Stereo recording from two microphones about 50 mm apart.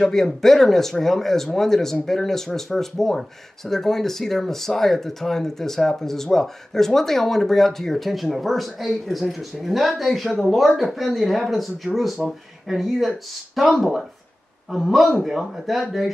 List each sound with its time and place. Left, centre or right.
0.0 s speech: centre